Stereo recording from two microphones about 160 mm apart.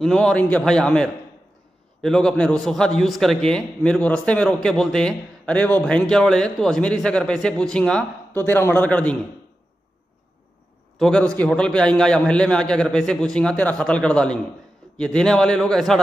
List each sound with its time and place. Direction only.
0.0 s a man's voice: 5° left (ahead or behind)
11.0 s a man's voice: 5° left (ahead or behind)